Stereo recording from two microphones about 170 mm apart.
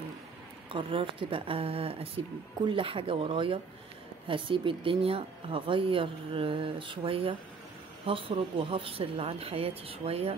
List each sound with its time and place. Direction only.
0.7 s speech: 30° right (ahead or behind)